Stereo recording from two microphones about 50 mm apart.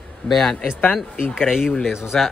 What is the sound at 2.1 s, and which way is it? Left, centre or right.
Speech, centre.